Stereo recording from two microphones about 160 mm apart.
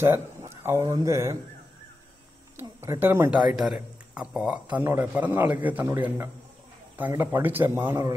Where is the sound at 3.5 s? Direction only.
Centre (ahead or behind).